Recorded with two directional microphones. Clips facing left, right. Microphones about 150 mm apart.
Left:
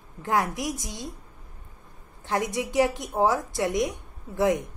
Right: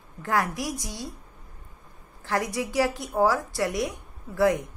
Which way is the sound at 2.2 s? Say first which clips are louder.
Even; 20° left (ahead or behind).